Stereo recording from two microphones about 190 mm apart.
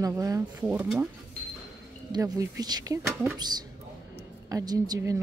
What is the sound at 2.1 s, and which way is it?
Speech, 20° right (ahead or behind).